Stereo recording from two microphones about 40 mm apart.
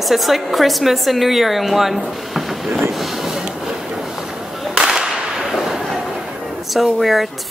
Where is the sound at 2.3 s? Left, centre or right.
Centre.